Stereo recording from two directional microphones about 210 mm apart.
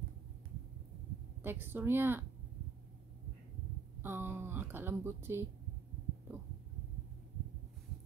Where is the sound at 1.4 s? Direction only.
10° right (ahead or behind).